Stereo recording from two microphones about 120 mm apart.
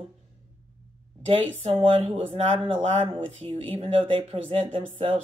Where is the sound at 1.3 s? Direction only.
45° right (ahead or behind).